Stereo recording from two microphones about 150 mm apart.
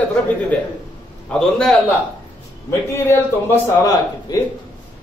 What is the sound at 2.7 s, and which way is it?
A man's voice, 20° left (ahead or behind).